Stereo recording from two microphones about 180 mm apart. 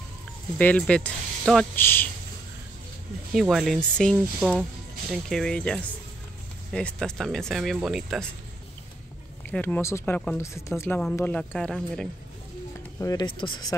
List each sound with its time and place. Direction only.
0.6 s speech: 10° left (ahead or behind)
3.3 s speech: centre (ahead or behind)
9.5 s speech: 10° left (ahead or behind)
13.0 s speech: 20° left (ahead or behind)